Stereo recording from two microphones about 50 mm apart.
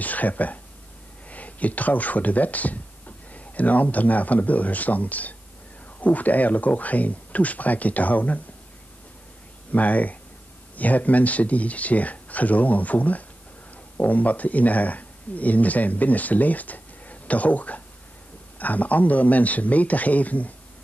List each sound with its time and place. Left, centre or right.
0.0 s speech: left
9.7 s speech: left